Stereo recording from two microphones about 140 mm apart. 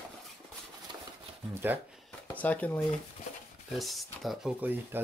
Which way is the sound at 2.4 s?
10° left (ahead or behind).